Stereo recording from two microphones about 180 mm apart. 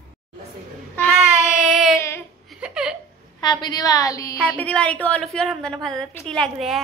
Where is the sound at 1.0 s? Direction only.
Centre (ahead or behind).